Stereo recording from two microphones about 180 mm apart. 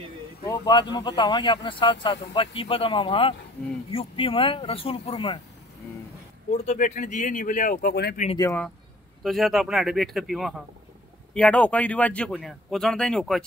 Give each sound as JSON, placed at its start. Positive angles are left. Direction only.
{"t": 0.4, "sound": "speech", "side_deg": 20}
{"t": 6.5, "sound": "speech", "side_deg": 40}
{"t": 9.2, "sound": "speech", "side_deg": 0}